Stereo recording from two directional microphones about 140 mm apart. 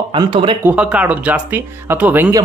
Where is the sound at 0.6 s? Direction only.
10° right (ahead or behind).